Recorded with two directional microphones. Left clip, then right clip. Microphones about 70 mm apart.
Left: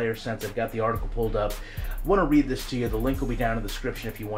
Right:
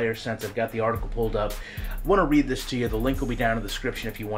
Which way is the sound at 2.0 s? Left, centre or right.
Right.